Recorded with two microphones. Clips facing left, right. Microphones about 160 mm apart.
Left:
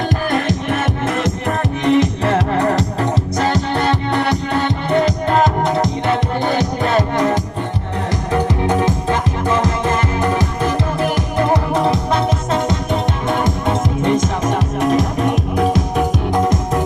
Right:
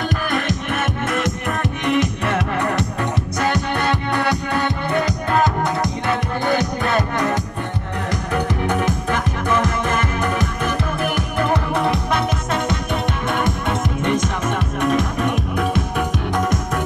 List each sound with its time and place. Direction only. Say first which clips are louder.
0.7 s music: left 3 dB; 30° left (ahead or behind)